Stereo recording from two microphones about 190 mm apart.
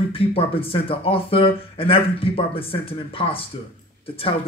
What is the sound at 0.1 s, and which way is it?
Speech, 30° left (ahead or behind).